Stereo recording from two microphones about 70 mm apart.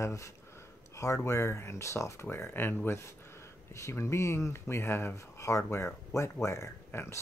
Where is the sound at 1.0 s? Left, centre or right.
Left.